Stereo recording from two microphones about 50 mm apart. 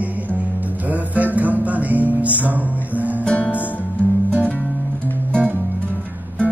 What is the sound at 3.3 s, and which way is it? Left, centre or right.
Music, left.